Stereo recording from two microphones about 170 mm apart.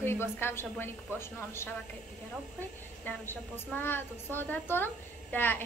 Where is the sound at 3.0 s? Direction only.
10° left (ahead or behind).